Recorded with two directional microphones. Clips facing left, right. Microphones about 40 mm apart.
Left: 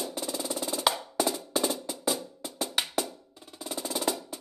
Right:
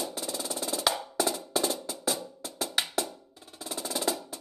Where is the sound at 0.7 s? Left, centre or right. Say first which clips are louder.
Left 1 dB; centre.